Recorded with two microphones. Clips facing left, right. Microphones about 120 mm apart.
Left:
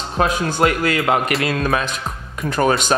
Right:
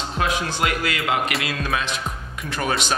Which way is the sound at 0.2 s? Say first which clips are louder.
Left 6 dB; 45° left (ahead or behind).